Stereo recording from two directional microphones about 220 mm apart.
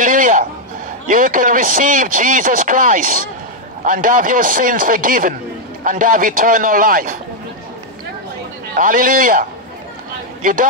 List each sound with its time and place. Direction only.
0.0 s a sound: 35° right (ahead or behind)
1.0 s a man's voice: 40° right (ahead or behind)
8.7 s a man's voice: 40° right (ahead or behind)